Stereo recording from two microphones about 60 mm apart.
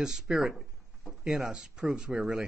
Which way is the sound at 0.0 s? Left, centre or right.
Centre.